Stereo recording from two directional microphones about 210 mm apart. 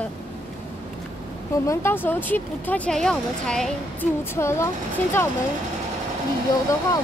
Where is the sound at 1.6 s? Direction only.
10° left (ahead or behind).